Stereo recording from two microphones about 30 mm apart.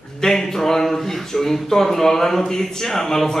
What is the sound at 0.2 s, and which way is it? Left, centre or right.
Speech, centre.